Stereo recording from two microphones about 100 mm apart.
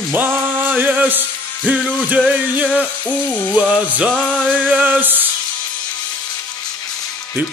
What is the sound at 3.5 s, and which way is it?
Speech, 15° right (ahead or behind).